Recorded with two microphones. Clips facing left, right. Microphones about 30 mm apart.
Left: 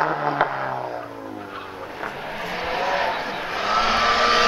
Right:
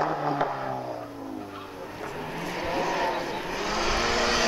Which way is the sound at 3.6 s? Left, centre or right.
Left.